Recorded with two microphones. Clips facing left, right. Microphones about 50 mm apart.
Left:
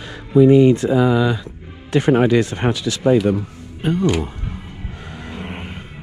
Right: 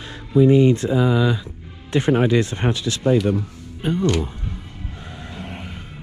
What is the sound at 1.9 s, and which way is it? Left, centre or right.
Speech, left.